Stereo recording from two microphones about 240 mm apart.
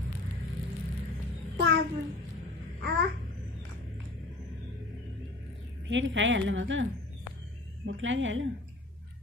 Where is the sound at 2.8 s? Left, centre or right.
Right.